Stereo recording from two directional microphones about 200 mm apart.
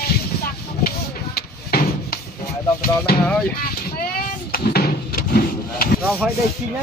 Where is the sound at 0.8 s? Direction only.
50° left (ahead or behind).